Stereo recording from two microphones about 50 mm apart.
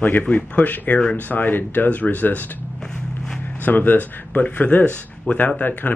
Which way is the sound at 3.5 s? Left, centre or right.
Left.